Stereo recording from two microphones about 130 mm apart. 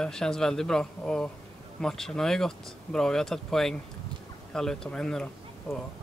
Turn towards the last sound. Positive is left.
turn(degrees=-5)  # may be behind; listen again after turning